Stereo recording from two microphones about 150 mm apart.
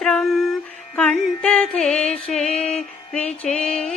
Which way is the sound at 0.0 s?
Centre (ahead or behind).